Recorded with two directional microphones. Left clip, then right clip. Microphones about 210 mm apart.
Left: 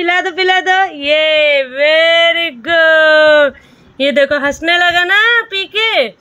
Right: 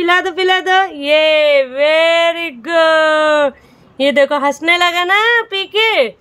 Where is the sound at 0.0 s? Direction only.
10° right (ahead or behind).